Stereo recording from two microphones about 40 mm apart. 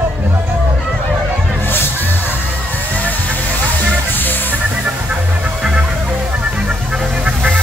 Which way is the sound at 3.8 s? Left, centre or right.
Left.